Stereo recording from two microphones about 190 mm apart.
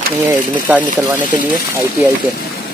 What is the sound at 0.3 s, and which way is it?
Speech, 10° right (ahead or behind).